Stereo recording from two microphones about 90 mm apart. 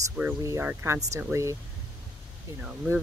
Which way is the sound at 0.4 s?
40° right (ahead or behind).